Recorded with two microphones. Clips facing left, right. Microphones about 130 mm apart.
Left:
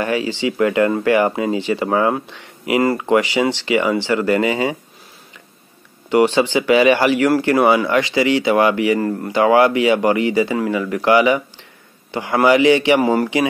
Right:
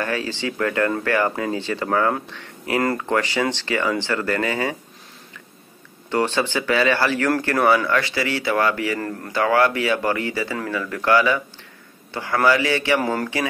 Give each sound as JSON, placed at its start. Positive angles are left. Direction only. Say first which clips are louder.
{"t": 0.0, "sound": "speech", "louder": "left 5 dB", "side_deg": 15}
{"t": 6.0, "sound": "speech", "louder": "left 7 dB", "side_deg": 15}